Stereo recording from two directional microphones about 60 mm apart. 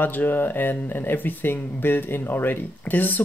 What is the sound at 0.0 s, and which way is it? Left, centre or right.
Speech, left.